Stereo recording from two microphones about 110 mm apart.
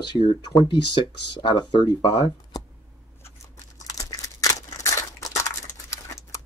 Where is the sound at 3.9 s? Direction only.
30° left (ahead or behind).